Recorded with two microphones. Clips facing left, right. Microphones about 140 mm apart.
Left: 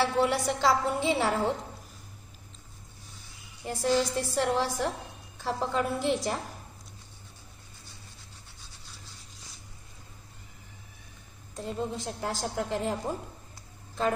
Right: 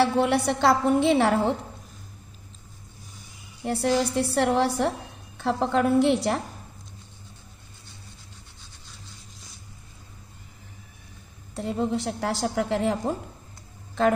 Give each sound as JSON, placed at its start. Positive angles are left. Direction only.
{"t": 0.0, "sound": "a woman's voice", "side_deg": -65}
{"t": 3.6, "sound": "a woman's voice", "side_deg": -70}
{"t": 11.5, "sound": "a woman's voice", "side_deg": -75}